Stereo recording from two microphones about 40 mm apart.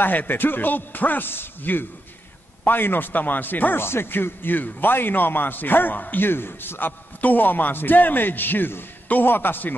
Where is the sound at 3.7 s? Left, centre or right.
Left.